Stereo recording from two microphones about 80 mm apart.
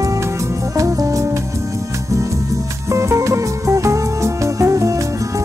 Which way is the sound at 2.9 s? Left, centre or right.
Right.